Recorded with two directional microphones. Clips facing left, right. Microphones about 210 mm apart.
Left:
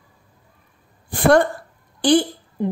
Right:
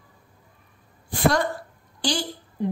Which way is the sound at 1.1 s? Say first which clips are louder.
Left 7 dB; 55° left (ahead or behind).